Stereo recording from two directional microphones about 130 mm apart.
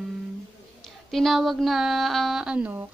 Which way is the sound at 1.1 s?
Centre (ahead or behind).